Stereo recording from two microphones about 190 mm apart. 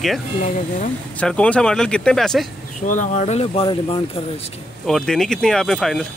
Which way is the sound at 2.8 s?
40° left (ahead or behind).